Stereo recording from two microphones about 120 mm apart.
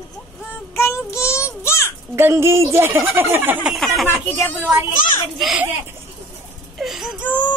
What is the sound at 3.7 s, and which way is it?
Speech, centre (ahead or behind).